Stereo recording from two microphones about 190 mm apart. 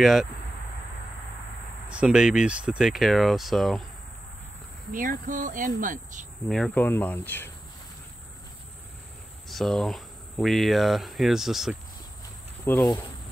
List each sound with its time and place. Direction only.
0.0 s speech: centre (ahead or behind)
1.9 s speech: 5° right (ahead or behind)
4.9 s speech: 45° right (ahead or behind)
6.5 s speech: 5° left (ahead or behind)
9.5 s speech: centre (ahead or behind)
12.7 s speech: 10° left (ahead or behind)